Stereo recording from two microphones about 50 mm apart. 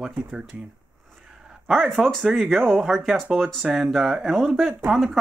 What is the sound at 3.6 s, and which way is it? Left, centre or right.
Speech, centre.